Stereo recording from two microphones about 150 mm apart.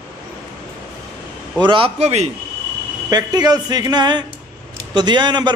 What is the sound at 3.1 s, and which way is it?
A man's voice, 25° right (ahead or behind).